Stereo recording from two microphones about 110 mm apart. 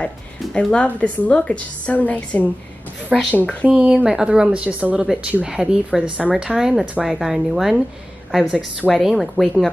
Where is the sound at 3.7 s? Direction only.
5° right (ahead or behind).